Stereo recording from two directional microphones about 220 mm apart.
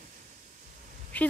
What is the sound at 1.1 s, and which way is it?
Speech, 5° left (ahead or behind).